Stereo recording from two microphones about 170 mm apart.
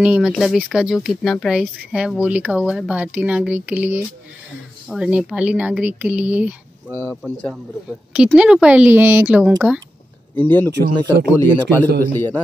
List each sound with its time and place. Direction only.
0.0 s speech: 5° right (ahead or behind)
7.0 s a man's voice: 15° left (ahead or behind)
8.1 s speech: 5° right (ahead or behind)
10.3 s a man's voice: 10° left (ahead or behind)